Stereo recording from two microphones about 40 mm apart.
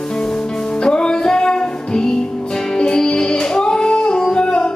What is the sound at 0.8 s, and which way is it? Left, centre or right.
Music, left.